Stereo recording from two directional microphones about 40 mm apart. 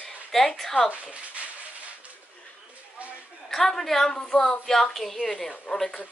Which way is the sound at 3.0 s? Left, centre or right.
Right.